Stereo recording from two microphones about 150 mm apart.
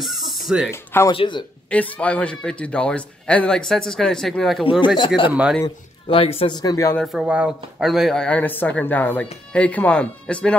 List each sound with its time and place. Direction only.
0.0 s a sound: centre (ahead or behind)
0.7 s speech: 15° left (ahead or behind)
1.1 s speech: 35° left (ahead or behind)
1.7 s speech: 10° left (ahead or behind)
4.6 s speech: 35° left (ahead or behind)
5.3 s a man's voice: 10° right (ahead or behind)
6.0 s speech: 40° left (ahead or behind)
6.5 s speech: 25° left (ahead or behind)
7.0 s speech: 5° right (ahead or behind)